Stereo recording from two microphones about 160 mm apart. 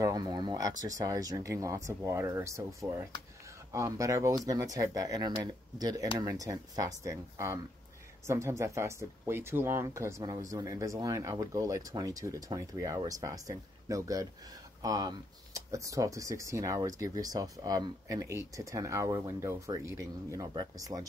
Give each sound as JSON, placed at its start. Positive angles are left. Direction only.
{"t": 0.0, "sound": "speech", "side_deg": -25}